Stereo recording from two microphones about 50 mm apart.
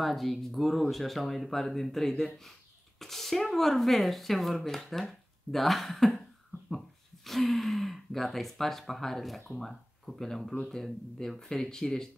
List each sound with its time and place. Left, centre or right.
0.0 s speech: centre
7.2 s speech: centre